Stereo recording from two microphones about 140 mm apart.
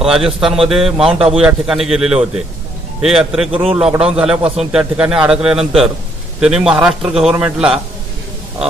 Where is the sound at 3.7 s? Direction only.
5° right (ahead or behind).